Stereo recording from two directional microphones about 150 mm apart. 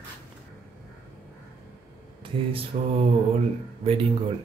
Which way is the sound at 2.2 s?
40° right (ahead or behind).